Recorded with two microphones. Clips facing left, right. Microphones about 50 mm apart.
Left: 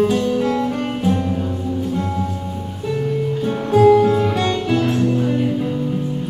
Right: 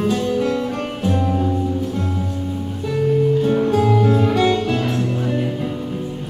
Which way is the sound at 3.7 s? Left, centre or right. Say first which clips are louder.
Left 4 dB; centre.